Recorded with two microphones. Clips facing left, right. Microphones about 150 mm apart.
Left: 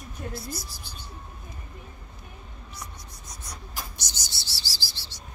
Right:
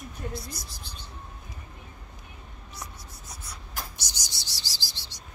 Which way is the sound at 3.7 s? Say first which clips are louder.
Right 1 dB; 10° right (ahead or behind).